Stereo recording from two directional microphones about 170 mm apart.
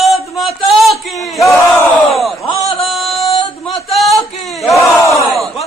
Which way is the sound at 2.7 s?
Centre (ahead or behind).